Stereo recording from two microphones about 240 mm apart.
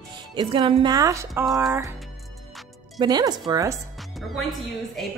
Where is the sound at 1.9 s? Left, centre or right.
Centre.